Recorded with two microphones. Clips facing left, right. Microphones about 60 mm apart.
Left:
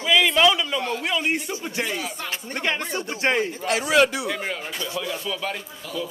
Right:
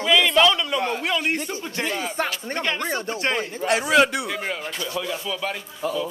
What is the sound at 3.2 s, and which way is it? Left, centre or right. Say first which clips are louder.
Speech: left 5 dB; left.